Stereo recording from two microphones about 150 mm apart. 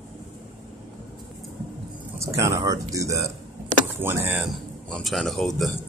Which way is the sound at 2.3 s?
20° right (ahead or behind).